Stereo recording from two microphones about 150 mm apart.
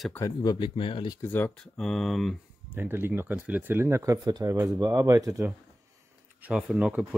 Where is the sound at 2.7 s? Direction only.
15° right (ahead or behind).